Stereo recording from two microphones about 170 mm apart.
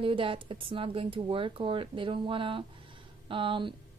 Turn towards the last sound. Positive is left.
turn(degrees=-30)  # may be behind; listen again after turning